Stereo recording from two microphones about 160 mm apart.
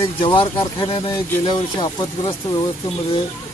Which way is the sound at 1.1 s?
20° left (ahead or behind).